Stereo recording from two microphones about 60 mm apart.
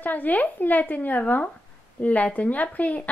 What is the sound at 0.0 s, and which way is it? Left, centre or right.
A woman's voice, left.